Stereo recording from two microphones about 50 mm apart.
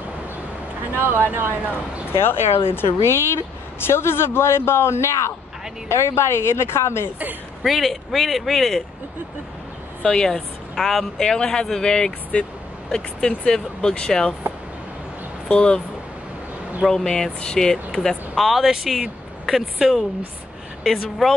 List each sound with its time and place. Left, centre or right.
0.9 s speech: right
2.1 s speech: left
7.6 s speech: centre
10.0 s speech: centre
12.3 s speech: left
15.4 s speech: left
16.8 s speech: centre